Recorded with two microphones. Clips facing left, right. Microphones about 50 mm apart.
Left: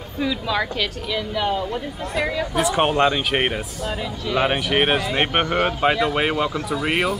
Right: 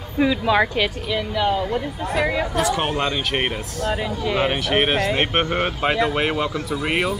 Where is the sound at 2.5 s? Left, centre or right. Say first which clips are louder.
Left 2 dB; centre.